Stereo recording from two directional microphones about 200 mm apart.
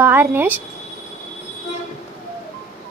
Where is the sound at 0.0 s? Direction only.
10° right (ahead or behind).